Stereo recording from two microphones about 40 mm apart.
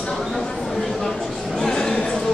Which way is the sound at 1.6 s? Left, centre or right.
Centre.